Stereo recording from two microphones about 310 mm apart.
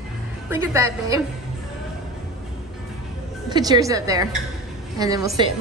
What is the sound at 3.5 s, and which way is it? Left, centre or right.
A woman's voice, centre.